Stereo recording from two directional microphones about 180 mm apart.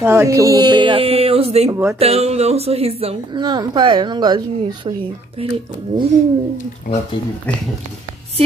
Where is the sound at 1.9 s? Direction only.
35° right (ahead or behind).